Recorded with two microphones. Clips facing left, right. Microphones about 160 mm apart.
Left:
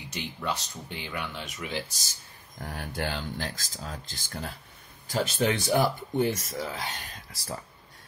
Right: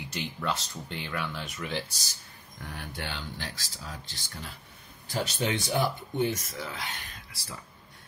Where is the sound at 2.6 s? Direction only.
45° left (ahead or behind).